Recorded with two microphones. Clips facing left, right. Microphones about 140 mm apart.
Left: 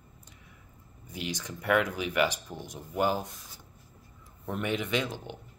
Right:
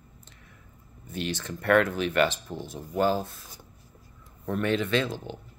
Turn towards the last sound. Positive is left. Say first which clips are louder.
# right 4 dB
turn(degrees=15)  # may be behind; listen again after turning